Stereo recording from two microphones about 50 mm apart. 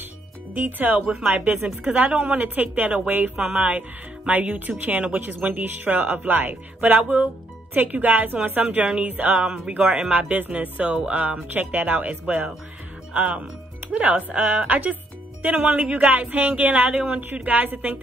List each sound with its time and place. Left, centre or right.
0.6 s speech: right
8.6 s speech: right
11.4 s speech: right
17.2 s speech: right